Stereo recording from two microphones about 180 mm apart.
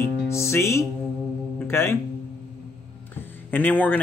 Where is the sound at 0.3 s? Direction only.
15° left (ahead or behind).